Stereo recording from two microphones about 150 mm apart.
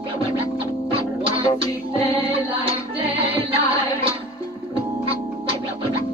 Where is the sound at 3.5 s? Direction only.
40° right (ahead or behind).